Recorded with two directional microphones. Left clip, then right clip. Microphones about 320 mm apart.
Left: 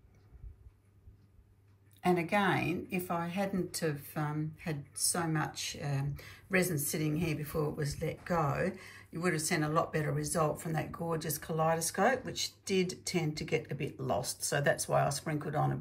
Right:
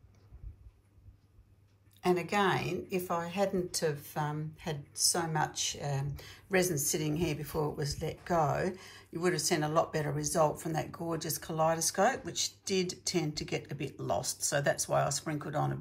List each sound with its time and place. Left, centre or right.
2.0 s a woman's voice: centre